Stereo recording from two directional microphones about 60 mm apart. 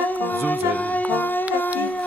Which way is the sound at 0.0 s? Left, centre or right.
Left.